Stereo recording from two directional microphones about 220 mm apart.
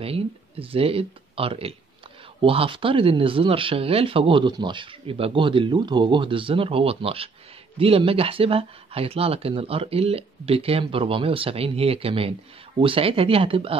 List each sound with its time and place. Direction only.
0.0 s speech: 25° right (ahead or behind)